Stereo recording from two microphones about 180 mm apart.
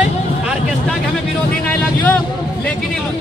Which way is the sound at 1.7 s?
5° left (ahead or behind).